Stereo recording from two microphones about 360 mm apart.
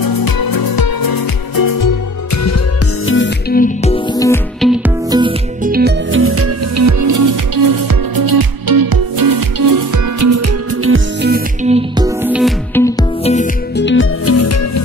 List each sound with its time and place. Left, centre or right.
0.0 s music: left
3.1 s music: left; by 4.9 s centre
5.1 s music: centre
5.7 s music: right
12.2 s music: centre; by 14.7 s left